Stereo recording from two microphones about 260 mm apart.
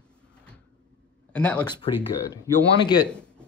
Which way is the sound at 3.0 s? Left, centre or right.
Centre.